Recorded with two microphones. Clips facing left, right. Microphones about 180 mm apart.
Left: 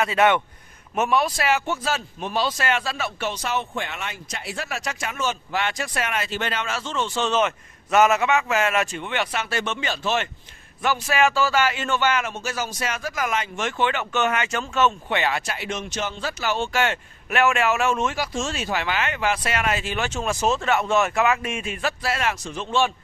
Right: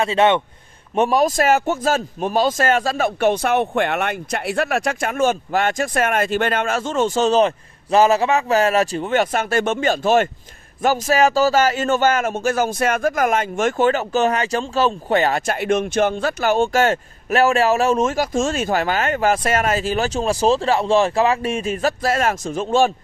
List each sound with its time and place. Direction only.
0.0 s a man's voice: 25° right (ahead or behind); by 22.9 s 45° right (ahead or behind)